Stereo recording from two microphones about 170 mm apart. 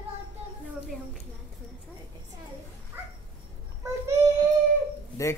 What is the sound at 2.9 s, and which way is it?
Dog, 10° right (ahead or behind).